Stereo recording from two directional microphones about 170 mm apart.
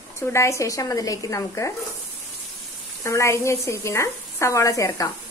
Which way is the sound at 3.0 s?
15° left (ahead or behind).